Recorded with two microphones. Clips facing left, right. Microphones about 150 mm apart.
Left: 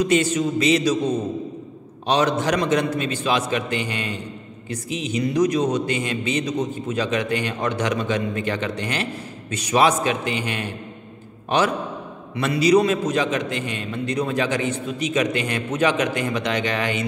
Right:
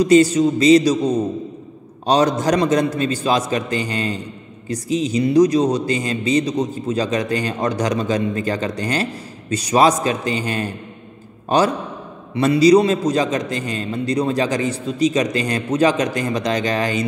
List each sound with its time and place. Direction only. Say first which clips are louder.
0.0 s a man's voice: right 7 dB; 35° right (ahead or behind)